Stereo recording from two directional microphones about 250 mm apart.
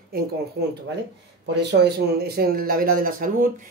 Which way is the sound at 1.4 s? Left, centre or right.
Right.